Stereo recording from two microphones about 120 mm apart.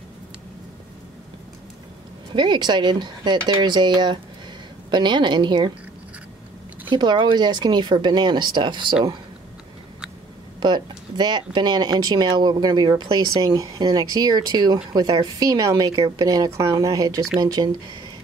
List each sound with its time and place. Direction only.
2.3 s speech: 40° right (ahead or behind)
6.9 s speech: 40° right (ahead or behind)
10.6 s a woman's voice: 40° right (ahead or behind)